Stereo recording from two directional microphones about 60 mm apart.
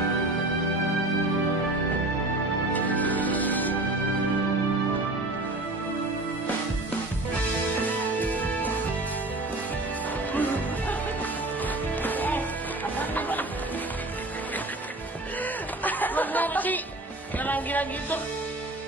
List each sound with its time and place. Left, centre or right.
2.7 s music: left
7.7 s music: left
10.3 s music: left
12.0 s music: left
15.8 s chatter: left
17.4 s music: left